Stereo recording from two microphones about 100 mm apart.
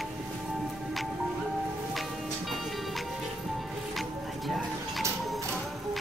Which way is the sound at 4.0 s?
Centre (ahead or behind).